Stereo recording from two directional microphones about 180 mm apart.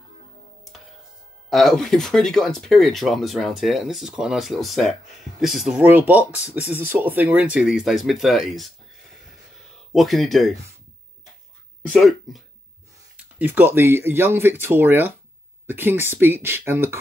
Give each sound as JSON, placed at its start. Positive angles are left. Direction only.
{"t": 1.5, "sound": "speech", "side_deg": 0}
{"t": 9.9, "sound": "speech", "side_deg": 0}
{"t": 11.9, "sound": "speech", "side_deg": 0}